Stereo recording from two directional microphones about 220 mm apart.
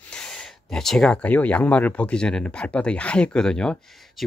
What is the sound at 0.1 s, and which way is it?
Speech, centre (ahead or behind).